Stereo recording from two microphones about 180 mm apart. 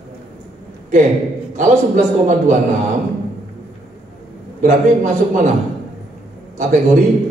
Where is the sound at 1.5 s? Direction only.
45° right (ahead or behind).